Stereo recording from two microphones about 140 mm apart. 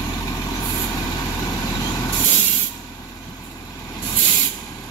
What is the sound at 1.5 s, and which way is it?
Vehicle, 25° left (ahead or behind).